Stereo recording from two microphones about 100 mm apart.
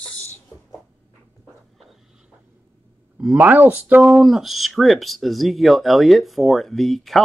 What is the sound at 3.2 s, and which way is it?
Speech, 10° right (ahead or behind).